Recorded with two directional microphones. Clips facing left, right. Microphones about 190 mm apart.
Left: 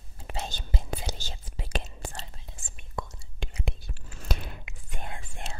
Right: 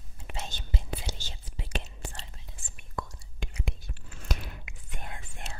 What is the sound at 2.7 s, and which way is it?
Whispering, 25° left (ahead or behind).